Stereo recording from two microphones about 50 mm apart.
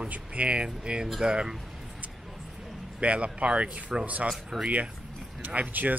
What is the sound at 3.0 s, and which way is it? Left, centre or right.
Speech, right.